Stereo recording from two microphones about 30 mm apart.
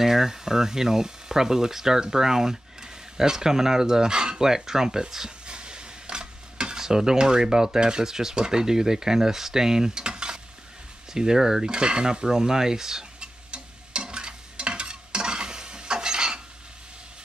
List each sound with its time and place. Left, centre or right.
0.0 s speech: centre
5.5 s stir: right
8.5 s speech: centre
10.0 s stir: right
11.3 s speech: centre
11.6 s speech: right
13.2 s stir: right